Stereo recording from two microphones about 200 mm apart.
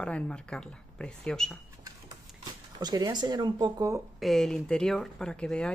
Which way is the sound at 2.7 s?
20° right (ahead or behind).